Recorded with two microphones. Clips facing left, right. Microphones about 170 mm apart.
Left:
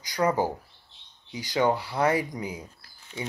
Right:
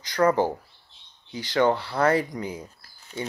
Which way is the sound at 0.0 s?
15° left (ahead or behind).